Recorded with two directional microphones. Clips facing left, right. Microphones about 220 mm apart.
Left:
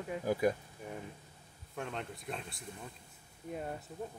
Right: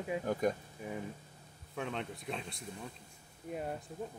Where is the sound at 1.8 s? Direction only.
Centre (ahead or behind).